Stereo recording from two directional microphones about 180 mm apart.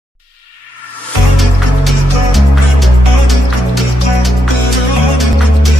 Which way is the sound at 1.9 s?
Centre (ahead or behind).